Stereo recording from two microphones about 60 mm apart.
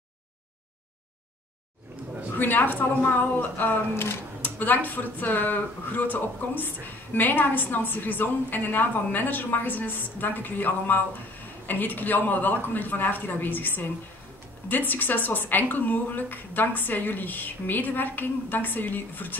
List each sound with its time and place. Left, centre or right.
2.3 s speech: left
3.9 s speech: left
4.4 s speech: left